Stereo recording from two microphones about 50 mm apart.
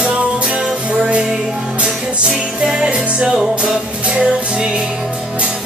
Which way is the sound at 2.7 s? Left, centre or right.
Centre.